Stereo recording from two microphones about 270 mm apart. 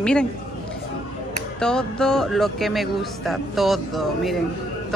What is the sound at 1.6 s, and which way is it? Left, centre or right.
Speech, centre.